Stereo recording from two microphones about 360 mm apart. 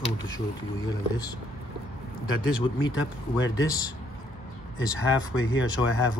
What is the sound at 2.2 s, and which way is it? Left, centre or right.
Speech, left.